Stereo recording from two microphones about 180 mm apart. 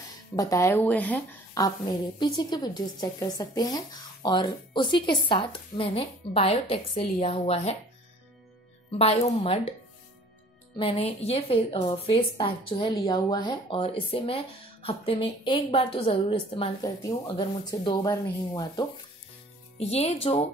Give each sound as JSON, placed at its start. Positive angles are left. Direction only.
{"t": 0.4, "sound": "speech", "side_deg": 15}
{"t": 1.6, "sound": "a woman's voice", "side_deg": 25}
{"t": 8.9, "sound": "a woman's voice", "side_deg": 30}
{"t": 10.8, "sound": "a woman's voice", "side_deg": 35}
{"t": 19.8, "sound": "a woman's voice", "side_deg": 35}